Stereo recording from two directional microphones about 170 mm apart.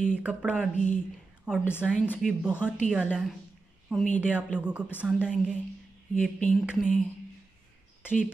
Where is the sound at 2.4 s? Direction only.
5° right (ahead or behind).